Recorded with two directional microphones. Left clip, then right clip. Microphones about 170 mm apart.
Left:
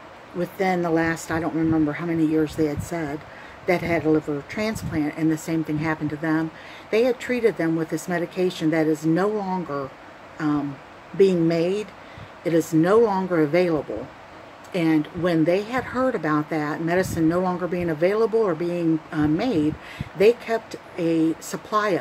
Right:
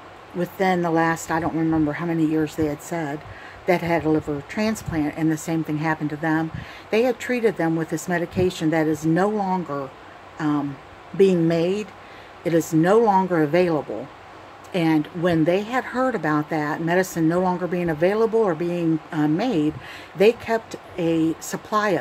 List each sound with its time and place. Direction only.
0.4 s speech: 20° right (ahead or behind)